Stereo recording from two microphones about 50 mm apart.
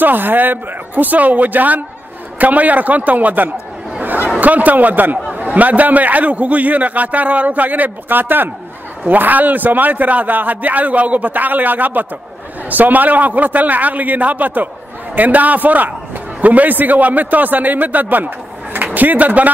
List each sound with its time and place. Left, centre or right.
0.0 s a man's voice: right